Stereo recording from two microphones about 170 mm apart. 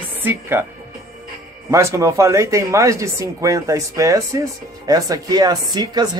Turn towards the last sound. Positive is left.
turn(degrees=-25)  # may be behind; listen again after turning